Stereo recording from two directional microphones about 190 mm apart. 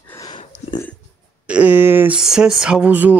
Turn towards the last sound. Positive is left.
turn(degrees=-10)  # may be behind; listen again after turning